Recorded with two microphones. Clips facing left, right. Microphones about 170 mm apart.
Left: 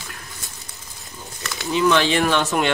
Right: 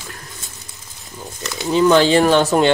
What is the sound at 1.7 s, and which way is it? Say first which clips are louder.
Speech: right 5 dB; 40° right (ahead or behind).